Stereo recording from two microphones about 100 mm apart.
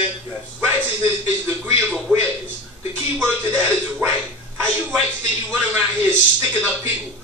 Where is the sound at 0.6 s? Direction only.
25° right (ahead or behind).